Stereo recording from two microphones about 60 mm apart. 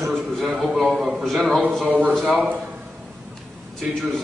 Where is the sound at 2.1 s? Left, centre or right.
Centre.